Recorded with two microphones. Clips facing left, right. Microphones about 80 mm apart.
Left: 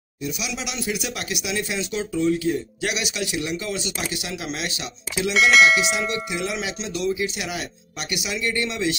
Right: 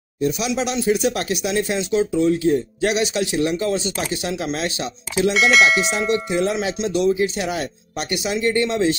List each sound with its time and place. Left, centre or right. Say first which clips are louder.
0.2 s speech: right 9 dB; right
5.3 s speech: left 1 dB; centre
5.8 s speech: right 4 dB; right